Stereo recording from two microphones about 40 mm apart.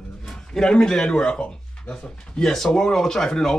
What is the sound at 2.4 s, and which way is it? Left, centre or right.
Speech, centre.